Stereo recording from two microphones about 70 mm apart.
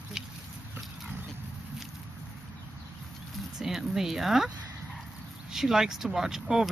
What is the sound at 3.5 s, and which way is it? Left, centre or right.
Speech, centre.